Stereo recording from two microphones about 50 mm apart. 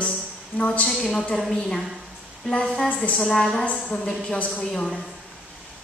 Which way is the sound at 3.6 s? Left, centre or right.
Left.